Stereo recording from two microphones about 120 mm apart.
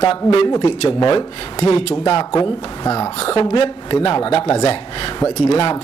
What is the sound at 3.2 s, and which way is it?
Speech, 45° left (ahead or behind).